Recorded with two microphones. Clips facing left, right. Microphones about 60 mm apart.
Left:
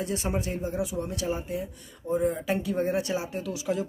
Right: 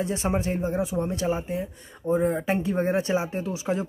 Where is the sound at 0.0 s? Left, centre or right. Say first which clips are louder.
Right 4 dB; right.